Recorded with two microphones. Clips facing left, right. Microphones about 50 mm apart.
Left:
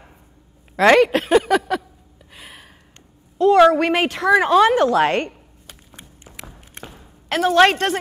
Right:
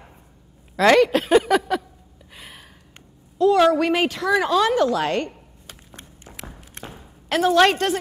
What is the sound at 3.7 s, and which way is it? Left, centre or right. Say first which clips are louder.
A woman's voice: left 2 dB; left.